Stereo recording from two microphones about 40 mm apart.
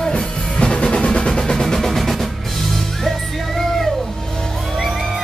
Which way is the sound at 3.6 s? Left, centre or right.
Centre.